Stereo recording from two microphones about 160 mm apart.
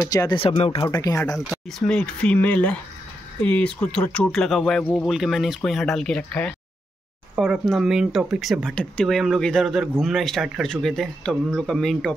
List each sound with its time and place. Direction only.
0.0 s speech: 20° left (ahead or behind)
0.4 s speech: 35° left (ahead or behind)
0.8 s speech: 20° left (ahead or behind)
1.5 s speech: centre (ahead or behind)
5.1 s speech: centre (ahead or behind)
7.3 s speech: 10° right (ahead or behind)